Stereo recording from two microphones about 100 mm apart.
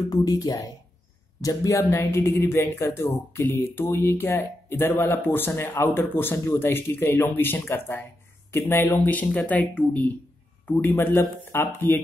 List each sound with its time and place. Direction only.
0.1 s speech: 40° left (ahead or behind); by 12.0 s 20° left (ahead or behind)